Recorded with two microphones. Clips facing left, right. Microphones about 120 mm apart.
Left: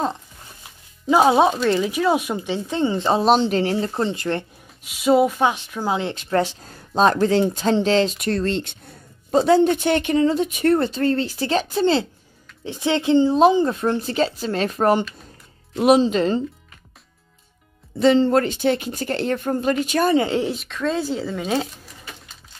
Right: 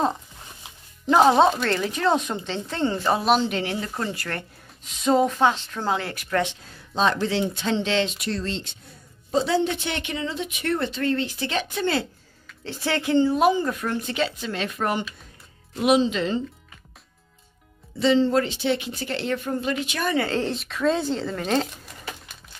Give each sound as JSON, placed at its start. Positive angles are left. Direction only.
{"t": 1.1, "sound": "speech", "side_deg": 10}
{"t": 4.8, "sound": "speech", "side_deg": 10}
{"t": 6.3, "sound": "speech", "side_deg": 35}
{"t": 17.9, "sound": "speech", "side_deg": 50}
{"t": 20.2, "sound": "speech", "side_deg": 15}
{"t": 20.5, "sound": "speech", "side_deg": 0}